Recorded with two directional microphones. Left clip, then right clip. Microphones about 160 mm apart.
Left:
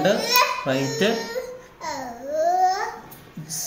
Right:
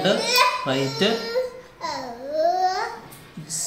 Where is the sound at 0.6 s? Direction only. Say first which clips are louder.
Even; 20° left (ahead or behind).